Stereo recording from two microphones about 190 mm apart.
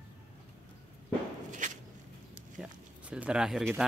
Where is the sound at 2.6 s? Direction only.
5° right (ahead or behind).